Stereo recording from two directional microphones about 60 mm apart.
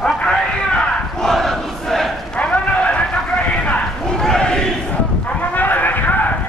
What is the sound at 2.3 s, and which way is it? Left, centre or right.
Run, left.